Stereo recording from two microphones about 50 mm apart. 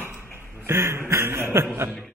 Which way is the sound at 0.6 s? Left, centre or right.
Right.